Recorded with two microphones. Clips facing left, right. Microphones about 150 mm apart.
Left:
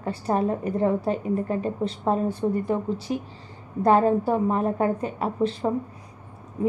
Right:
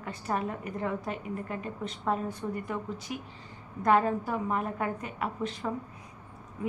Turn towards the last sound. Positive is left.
turn(degrees=35)  # may be behind; listen again after turning